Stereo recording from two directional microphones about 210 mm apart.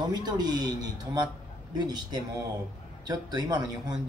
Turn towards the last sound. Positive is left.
turn(degrees=-20)  # may be behind; listen again after turning